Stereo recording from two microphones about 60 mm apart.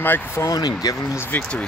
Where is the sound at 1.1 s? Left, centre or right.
Left.